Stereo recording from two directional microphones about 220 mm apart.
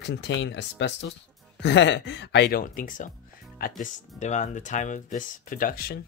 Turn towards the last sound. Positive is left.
turn(degrees=40)  # may be behind; listen again after turning